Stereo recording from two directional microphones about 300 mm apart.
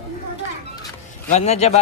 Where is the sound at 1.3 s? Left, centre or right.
Left.